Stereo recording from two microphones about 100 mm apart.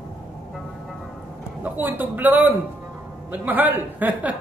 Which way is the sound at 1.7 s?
20° right (ahead or behind).